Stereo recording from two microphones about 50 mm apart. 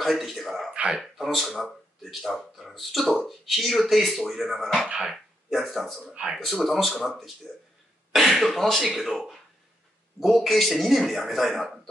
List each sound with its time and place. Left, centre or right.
0.0 s a man's voice: centre
0.7 s speech: right
1.1 s a man's voice: centre